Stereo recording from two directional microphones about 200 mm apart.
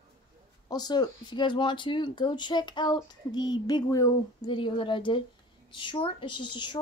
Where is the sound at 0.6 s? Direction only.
20° left (ahead or behind).